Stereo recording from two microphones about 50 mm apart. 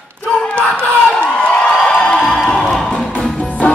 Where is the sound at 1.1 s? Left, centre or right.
Left.